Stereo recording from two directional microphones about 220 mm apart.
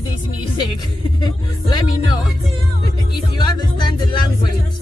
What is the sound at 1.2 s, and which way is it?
Speech, 20° left (ahead or behind).